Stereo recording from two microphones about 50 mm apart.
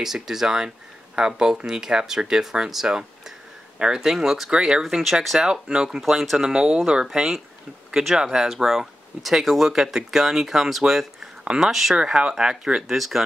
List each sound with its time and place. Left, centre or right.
0.0 s speech: centre
4.5 s speech: centre
5.2 s speech: centre
5.5 s speech: centre
7.1 s speech: centre
11.9 s speech: centre
12.8 s speech: centre